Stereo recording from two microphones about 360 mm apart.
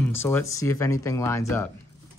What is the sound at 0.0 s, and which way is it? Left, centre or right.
Speech, centre.